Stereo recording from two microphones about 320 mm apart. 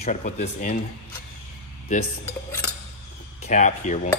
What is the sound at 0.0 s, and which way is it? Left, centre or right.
Speech, left.